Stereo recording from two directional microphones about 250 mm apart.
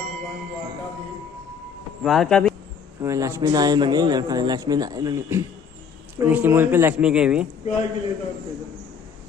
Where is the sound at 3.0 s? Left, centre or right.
Centre.